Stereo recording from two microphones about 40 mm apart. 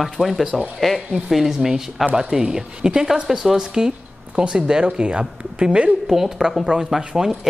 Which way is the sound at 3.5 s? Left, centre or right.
Centre.